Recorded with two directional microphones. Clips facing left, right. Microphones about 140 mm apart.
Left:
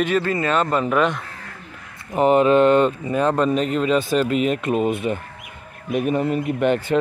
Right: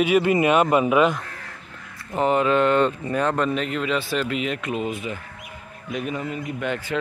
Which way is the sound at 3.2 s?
35° left (ahead or behind).